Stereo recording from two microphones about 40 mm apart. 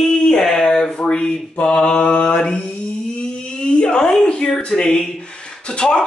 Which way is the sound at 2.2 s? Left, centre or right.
Left.